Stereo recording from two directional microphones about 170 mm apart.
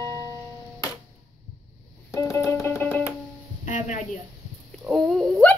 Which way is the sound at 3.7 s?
50° left (ahead or behind).